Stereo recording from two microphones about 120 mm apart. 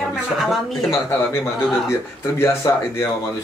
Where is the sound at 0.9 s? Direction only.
25° left (ahead or behind).